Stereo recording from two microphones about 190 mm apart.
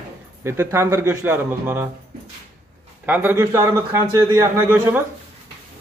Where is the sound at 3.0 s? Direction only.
10° right (ahead or behind).